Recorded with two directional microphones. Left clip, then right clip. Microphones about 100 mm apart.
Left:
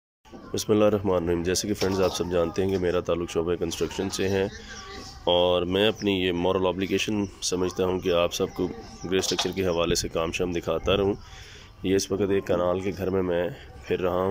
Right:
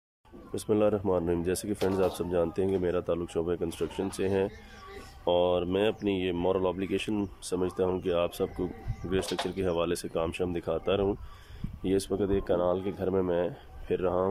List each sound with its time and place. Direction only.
0.6 s speech: 15° right (ahead or behind)